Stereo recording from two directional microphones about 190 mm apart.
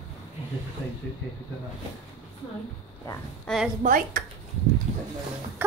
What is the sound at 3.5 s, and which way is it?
Speech, 5° left (ahead or behind).